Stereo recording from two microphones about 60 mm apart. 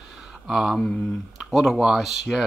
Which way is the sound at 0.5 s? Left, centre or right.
Centre.